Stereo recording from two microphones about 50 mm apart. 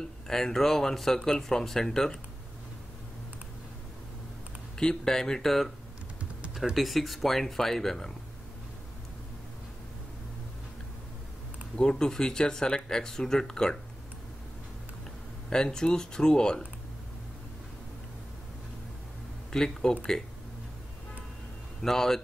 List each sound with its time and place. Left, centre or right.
0.3 s speech: centre
4.7 s speech: centre
11.7 s speech: centre
15.5 s speech: centre
19.5 s speech: centre
21.8 s speech: centre